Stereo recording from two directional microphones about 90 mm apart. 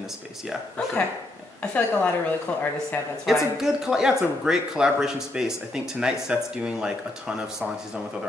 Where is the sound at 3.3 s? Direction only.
5° right (ahead or behind).